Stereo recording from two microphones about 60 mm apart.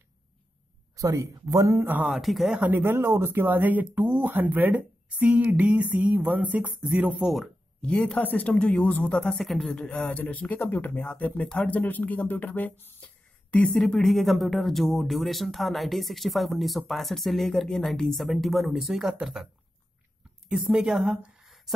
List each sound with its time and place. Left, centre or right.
0.9 s speech: right
2.0 s speech: centre
2.7 s speech: right
7.8 s speech: left
9.2 s speech: centre
9.8 s speech: centre
13.7 s speech: centre
20.4 s a woman's voice: centre